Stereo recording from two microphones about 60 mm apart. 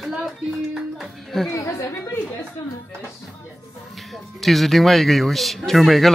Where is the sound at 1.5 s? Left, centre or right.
Left.